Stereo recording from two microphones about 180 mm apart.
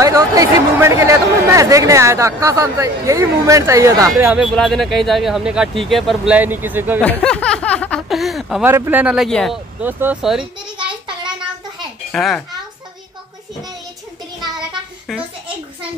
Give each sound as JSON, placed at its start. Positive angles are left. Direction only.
{"t": 0.0, "sound": "speech", "side_deg": -20}
{"t": 7.0, "sound": "speech", "side_deg": 5}
{"t": 8.6, "sound": "speech", "side_deg": -15}
{"t": 9.8, "sound": "speech", "side_deg": -10}
{"t": 12.1, "sound": "speech", "side_deg": 5}
{"t": 15.0, "sound": "a sound", "side_deg": -5}